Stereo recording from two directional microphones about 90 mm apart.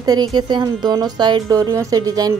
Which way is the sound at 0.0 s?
50° right (ahead or behind).